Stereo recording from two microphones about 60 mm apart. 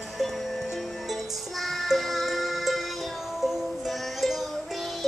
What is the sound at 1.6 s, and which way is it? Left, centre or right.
Music, centre.